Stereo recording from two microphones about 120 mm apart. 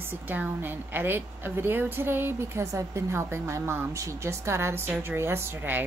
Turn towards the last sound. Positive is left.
turn(degrees=-20)  # may be behind; listen again after turning